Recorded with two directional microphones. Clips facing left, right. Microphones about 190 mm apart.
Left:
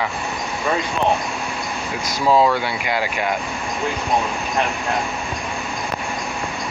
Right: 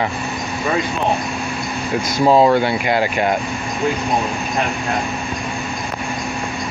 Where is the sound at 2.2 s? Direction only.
20° right (ahead or behind).